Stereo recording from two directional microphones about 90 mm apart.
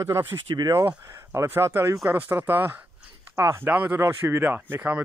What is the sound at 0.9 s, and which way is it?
Speech, 35° right (ahead or behind).